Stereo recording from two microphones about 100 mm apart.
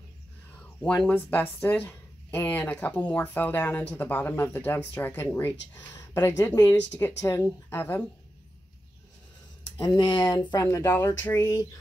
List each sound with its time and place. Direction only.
1.0 s speech: 20° left (ahead or behind); by 6.7 s 35° left (ahead or behind)
6.7 s speech: 20° left (ahead or behind)
9.9 s speech: 55° left (ahead or behind)
10.5 s speech: 30° left (ahead or behind)